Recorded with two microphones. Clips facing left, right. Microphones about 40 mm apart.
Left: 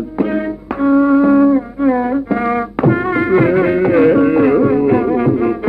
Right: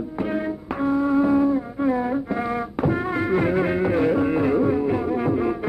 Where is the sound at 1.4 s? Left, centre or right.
Left.